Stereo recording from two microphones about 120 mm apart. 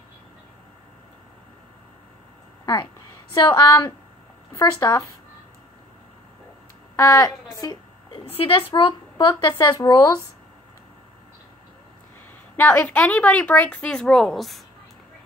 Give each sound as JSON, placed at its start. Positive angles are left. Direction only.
{"t": 2.6, "sound": "speech", "side_deg": 40}
{"t": 7.0, "sound": "a woman's voice", "side_deg": 25}
{"t": 8.1, "sound": "a woman's voice", "side_deg": 50}
{"t": 9.4, "sound": "speech", "side_deg": 30}
{"t": 12.5, "sound": "a woman's voice", "side_deg": 15}